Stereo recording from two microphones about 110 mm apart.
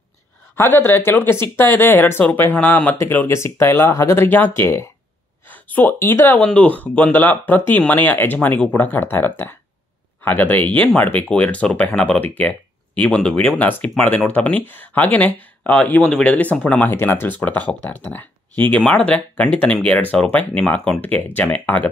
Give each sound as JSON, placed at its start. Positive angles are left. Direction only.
{"t": 0.6, "sound": "speech", "side_deg": 20}